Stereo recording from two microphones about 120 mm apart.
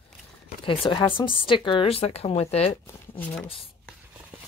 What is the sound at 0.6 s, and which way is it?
Speech, 50° left (ahead or behind).